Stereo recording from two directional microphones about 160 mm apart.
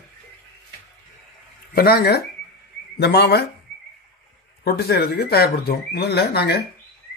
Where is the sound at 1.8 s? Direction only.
75° left (ahead or behind).